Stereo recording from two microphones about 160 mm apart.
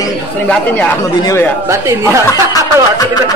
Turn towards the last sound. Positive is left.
turn(degrees=20)  # may be behind; listen again after turning